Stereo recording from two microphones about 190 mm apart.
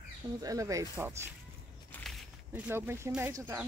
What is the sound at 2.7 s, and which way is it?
Speech, 10° right (ahead or behind).